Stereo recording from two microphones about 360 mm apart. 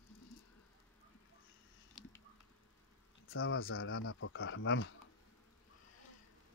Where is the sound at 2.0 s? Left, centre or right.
Centre.